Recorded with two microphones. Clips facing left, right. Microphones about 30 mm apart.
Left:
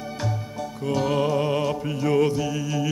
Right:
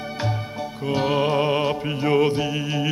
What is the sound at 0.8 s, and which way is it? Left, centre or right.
Music, right.